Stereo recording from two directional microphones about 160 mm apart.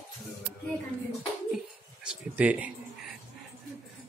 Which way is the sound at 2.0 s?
10° right (ahead or behind).